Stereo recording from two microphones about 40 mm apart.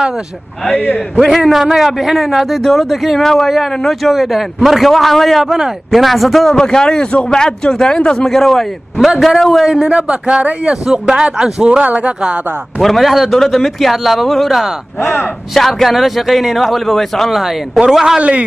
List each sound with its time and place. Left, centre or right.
1.2 s a man's voice: centre
4.0 s a man's voice: centre
5.5 s a man's voice: centre
6.5 s a man's voice: centre
8.4 s a man's voice: centre
9.8 s speech: right
10.9 s a man's voice: centre
11.8 s speech: right
12.8 s a man's voice: centre
17.7 s a man's voice: centre